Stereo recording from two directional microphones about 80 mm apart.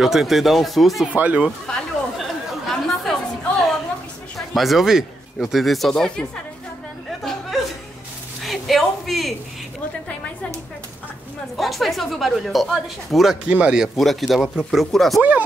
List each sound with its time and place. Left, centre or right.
0.0 s speech: centre
1.0 s speech: centre
2.7 s chatter: centre
4.4 s speech: centre
7.1 s a sound: centre
11.5 s speech: centre
13.5 s speech: centre
13.9 s speech: centre